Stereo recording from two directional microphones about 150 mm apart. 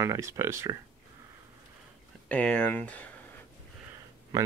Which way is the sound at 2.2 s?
5° left (ahead or behind).